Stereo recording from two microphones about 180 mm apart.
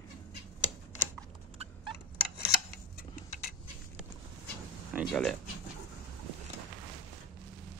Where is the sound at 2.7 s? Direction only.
55° left (ahead or behind).